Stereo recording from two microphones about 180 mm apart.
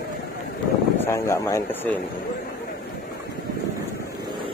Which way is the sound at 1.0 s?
15° left (ahead or behind).